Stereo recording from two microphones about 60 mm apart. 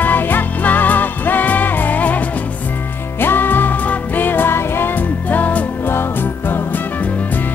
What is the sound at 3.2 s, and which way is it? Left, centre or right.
Music, left.